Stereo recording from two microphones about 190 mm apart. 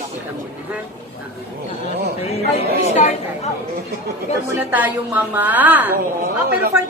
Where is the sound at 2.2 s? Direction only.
35° left (ahead or behind).